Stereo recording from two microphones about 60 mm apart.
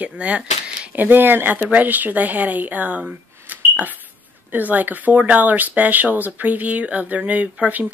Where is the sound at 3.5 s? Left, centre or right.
Right.